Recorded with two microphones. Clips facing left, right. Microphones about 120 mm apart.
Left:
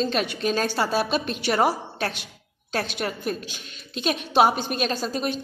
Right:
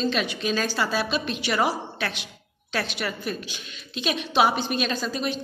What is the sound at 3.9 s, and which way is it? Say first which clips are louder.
A woman's voice: left 2 dB; 45° left (ahead or behind).